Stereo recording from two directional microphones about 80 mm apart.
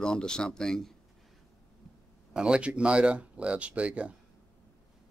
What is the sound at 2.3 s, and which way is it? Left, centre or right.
Speech, centre.